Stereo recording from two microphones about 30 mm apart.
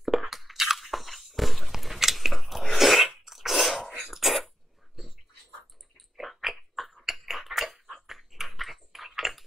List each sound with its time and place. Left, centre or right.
0.0 s crunch: centre
2.2 s sneeze: centre
4.1 s cough: centre
4.9 s a sound: centre
5.9 s chewing: centre
7.2 s a sound: centre